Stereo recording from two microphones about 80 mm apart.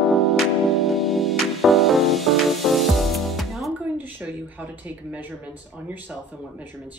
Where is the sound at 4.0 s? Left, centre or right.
Right.